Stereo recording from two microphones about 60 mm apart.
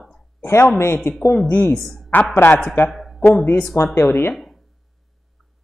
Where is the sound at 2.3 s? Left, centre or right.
Left.